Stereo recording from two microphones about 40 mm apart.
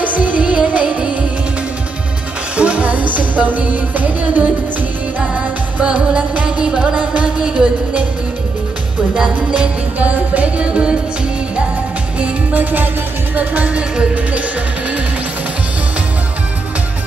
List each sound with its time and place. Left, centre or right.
0.0 s music: right
2.5 s music: right
9.2 s music: right
9.9 s music: right
12.5 s music: right